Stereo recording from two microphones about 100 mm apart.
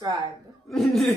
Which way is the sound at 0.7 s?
Centre (ahead or behind).